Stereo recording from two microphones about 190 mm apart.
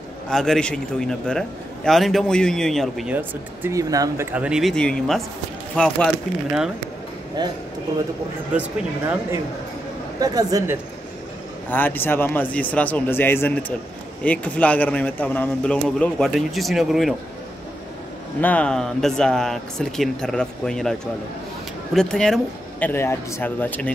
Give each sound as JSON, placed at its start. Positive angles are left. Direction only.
{"t": 0.3, "sound": "speech", "side_deg": 5}
{"t": 7.4, "sound": "speech", "side_deg": -20}
{"t": 8.5, "sound": "speech", "side_deg": -10}
{"t": 11.7, "sound": "a man's voice", "side_deg": 10}
{"t": 18.4, "sound": "speech", "side_deg": 5}
{"t": 21.9, "sound": "a man's voice", "side_deg": 5}